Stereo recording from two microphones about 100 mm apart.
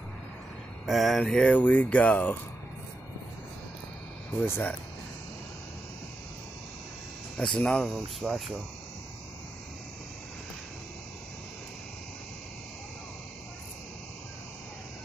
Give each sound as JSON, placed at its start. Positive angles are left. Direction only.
{"t": 0.8, "sound": "speech", "side_deg": 0}
{"t": 4.5, "sound": "speech", "side_deg": 20}
{"t": 7.3, "sound": "speech", "side_deg": 10}